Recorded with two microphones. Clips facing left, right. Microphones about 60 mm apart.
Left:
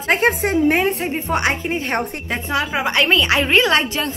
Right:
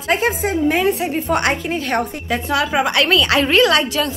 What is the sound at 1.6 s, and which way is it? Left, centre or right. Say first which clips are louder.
A woman's voice: right 1 dB; left.